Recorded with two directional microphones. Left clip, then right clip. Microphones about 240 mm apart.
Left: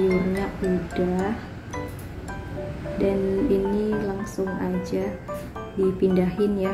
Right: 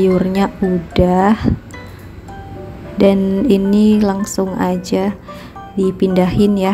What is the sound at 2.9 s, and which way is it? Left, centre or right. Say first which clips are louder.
Speech: right 10 dB; right.